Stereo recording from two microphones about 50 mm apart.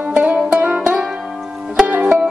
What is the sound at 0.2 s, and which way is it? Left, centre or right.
Music, right.